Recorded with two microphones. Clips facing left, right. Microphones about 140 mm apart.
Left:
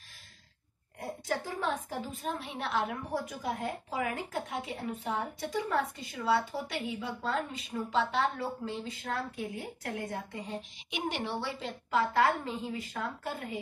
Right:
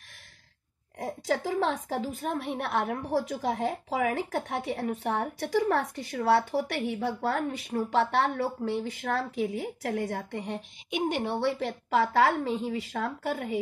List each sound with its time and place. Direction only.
0.9 s a woman's voice: 90° right; by 10.6 s 70° right (ahead or behind)
10.9 s a woman's voice: 50° right (ahead or behind)
11.4 s speech: 70° right (ahead or behind)